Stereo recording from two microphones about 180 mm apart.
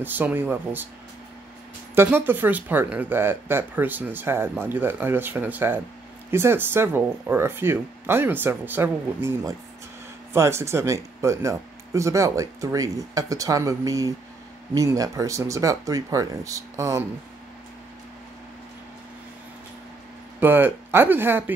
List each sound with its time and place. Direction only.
0.0 s speech: 10° right (ahead or behind)
2.0 s speech: 10° right (ahead or behind)
20.3 s speech: 10° right (ahead or behind)